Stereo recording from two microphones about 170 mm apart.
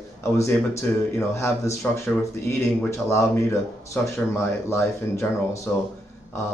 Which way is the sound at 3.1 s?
15° left (ahead or behind).